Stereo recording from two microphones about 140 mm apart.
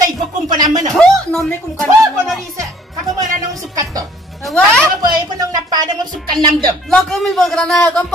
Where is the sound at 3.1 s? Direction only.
25° right (ahead or behind).